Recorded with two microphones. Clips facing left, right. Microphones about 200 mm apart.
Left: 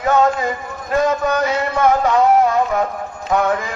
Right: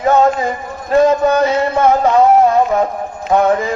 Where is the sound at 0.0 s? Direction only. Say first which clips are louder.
Right 3 dB; 30° right (ahead or behind).